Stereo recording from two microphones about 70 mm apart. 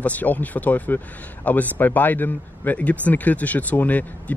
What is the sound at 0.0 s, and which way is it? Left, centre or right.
Speech, left.